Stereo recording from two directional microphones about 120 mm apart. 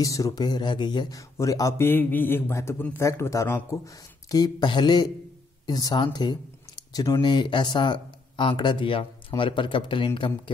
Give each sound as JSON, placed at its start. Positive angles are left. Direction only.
{"t": 0.0, "sound": "a man's voice", "side_deg": 30}